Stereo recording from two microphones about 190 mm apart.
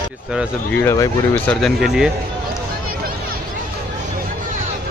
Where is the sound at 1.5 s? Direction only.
Centre (ahead or behind).